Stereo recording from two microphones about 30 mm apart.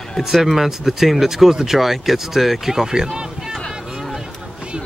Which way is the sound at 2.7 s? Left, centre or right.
Centre.